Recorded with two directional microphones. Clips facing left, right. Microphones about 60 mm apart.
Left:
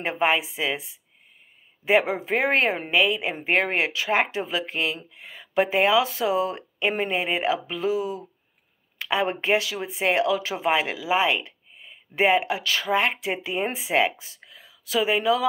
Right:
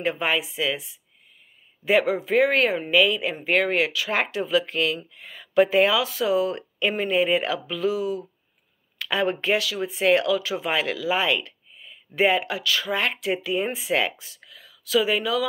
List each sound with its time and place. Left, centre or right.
0.0 s speech: left